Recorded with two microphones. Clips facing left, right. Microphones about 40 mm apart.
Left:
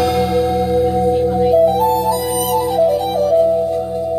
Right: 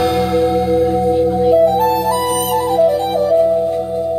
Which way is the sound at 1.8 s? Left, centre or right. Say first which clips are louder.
Even; right.